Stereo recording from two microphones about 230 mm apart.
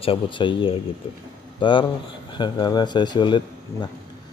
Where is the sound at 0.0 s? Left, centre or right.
Left.